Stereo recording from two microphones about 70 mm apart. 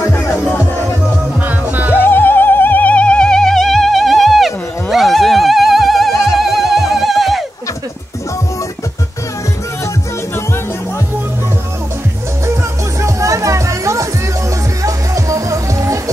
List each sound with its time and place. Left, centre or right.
2.0 s music: left; by 7.4 s centre
13.0 s music: right